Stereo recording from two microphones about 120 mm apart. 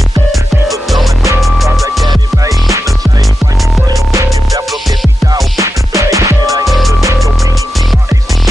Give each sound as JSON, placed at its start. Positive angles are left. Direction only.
{"t": 0.3, "sound": "music", "side_deg": 0}
{"t": 2.0, "sound": "music", "side_deg": -30}
{"t": 5.3, "sound": "music", "side_deg": -25}
{"t": 6.6, "sound": "music", "side_deg": 0}
{"t": 6.9, "sound": "music", "side_deg": -25}